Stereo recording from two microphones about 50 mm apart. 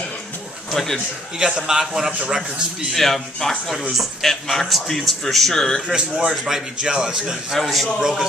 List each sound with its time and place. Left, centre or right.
0.9 s a man's voice: centre
2.9 s a man's voice: centre
3.9 s a man's voice: centre
4.3 s a man's voice: centre
5.9 s a man's voice: centre
6.3 s a man's voice: centre
6.8 s a man's voice: centre
7.5 s a man's voice: centre
8.0 s a man's voice: centre